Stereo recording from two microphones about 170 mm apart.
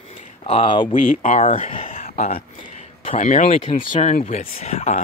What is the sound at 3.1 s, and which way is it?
Speech, 45° left (ahead or behind).